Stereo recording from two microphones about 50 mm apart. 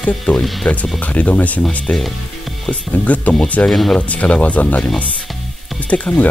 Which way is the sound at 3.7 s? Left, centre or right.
Centre.